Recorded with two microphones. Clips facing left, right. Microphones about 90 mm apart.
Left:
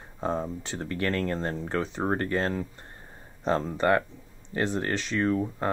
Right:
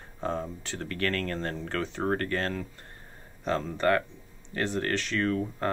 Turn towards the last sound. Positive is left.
turn(degrees=15)  # may be behind; listen again after turning